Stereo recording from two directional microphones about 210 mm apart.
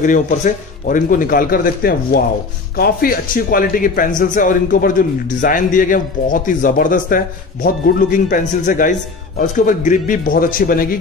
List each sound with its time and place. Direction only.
0.0 s a man's voice: 35° left (ahead or behind)